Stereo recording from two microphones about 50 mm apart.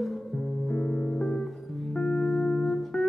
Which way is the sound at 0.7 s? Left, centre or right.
Centre.